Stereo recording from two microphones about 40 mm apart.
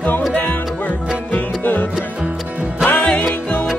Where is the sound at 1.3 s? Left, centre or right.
Left.